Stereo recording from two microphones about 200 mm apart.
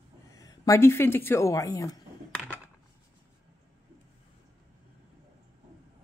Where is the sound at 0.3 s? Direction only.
15° left (ahead or behind).